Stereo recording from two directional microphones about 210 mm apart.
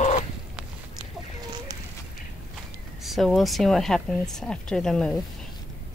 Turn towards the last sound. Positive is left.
turn(degrees=5)  # may be behind; listen again after turning